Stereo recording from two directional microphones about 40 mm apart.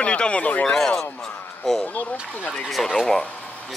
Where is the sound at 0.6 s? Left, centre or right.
Centre.